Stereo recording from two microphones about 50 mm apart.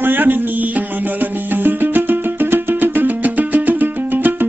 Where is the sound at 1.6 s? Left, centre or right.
Right.